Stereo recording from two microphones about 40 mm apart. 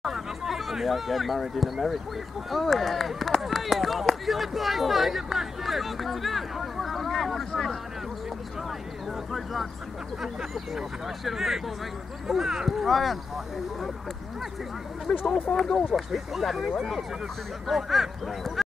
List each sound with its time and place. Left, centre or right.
0.0 s a sound: centre
2.5 s speech: centre
10.8 s speech: centre
12.7 s speech: centre
15.1 s speech: centre
15.5 s speech: centre
15.9 s speech: centre